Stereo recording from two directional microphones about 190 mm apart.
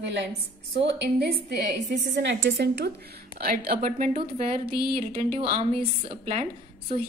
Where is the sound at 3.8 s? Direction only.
45° right (ahead or behind).